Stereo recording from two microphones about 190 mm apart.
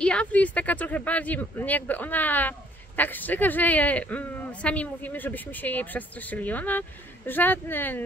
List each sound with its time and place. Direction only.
0.0 s speech: 5° left (ahead or behind)